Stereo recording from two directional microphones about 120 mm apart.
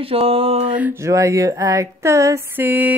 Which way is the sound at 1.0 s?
25° right (ahead or behind).